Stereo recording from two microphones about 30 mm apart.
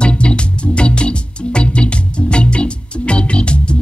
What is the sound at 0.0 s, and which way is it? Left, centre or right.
Music, left.